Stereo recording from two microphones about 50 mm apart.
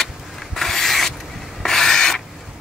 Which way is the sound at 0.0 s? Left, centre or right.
Centre.